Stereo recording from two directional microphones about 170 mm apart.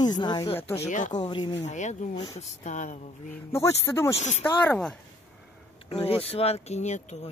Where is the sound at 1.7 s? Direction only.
45° left (ahead or behind).